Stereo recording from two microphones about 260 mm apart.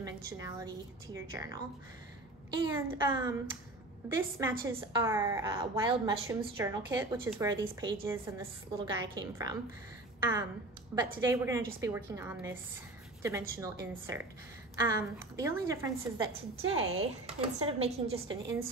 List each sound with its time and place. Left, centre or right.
0.0 s a woman's voice: centre
2.6 s a woman's voice: centre
11.0 s a woman's voice: centre
16.5 s speech: right